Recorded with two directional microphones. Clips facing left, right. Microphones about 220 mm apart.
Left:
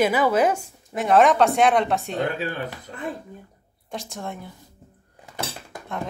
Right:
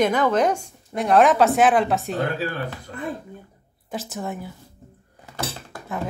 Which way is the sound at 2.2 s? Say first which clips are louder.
Right 1 dB; 20° left (ahead or behind).